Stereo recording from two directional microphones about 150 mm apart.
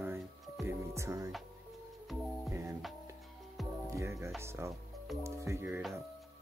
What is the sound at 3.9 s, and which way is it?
Speech, 20° right (ahead or behind).